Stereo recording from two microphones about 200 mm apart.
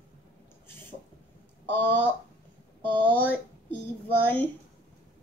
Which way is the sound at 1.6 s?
10° left (ahead or behind).